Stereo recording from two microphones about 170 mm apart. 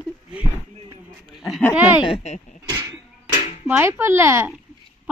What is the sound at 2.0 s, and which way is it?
Speech, 40° left (ahead or behind).